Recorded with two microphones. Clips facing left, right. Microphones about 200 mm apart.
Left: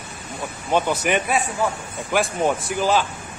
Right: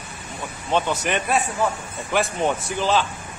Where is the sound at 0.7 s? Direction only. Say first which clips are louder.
Left 2 dB; 15° left (ahead or behind).